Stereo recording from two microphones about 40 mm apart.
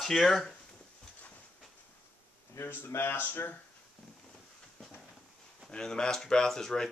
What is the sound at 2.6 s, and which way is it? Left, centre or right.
Speech, left.